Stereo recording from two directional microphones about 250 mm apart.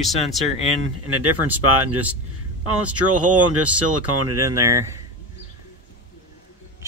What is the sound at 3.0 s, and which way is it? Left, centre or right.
Speech, right.